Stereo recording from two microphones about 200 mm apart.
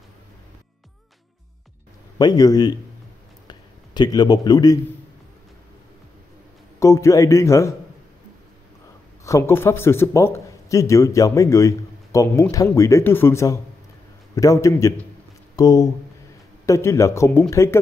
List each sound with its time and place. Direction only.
2.1 s a man's voice: 20° left (ahead or behind)
3.4 s a sound: 20° left (ahead or behind)
6.8 s a man's voice: 15° left (ahead or behind)
9.2 s a man's voice: 15° left (ahead or behind)